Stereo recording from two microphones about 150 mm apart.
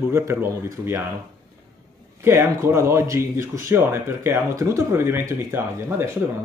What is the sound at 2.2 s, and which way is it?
Speech, 20° right (ahead or behind).